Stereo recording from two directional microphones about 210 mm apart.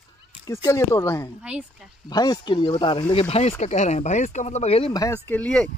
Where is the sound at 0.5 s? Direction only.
15° left (ahead or behind).